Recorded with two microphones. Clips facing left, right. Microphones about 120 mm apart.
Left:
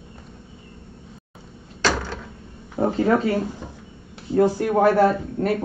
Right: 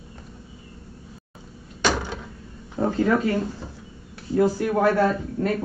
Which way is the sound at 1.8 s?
15° right (ahead or behind).